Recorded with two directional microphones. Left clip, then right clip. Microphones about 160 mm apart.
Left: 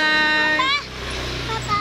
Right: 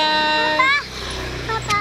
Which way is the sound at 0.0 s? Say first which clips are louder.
Even; 15° left (ahead or behind).